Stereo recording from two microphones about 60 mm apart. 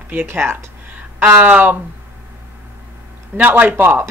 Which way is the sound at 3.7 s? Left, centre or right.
Right.